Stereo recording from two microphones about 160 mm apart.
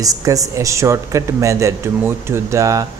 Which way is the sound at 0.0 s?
20° right (ahead or behind).